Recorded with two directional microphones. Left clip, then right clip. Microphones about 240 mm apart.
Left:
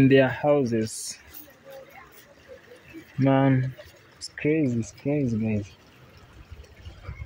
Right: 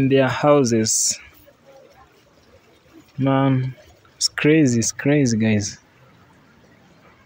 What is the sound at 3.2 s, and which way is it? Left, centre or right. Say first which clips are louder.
Speech: right 2 dB; centre.